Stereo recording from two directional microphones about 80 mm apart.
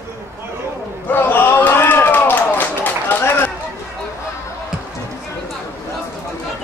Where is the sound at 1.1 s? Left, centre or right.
Left.